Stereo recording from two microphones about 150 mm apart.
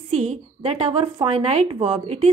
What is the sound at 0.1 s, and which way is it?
A woman's voice, 45° right (ahead or behind).